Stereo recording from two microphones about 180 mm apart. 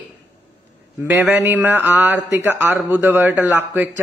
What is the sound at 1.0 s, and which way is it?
A man's voice, 10° right (ahead or behind).